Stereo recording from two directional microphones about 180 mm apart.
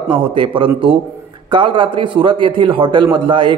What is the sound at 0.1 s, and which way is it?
A man's voice, 30° right (ahead or behind).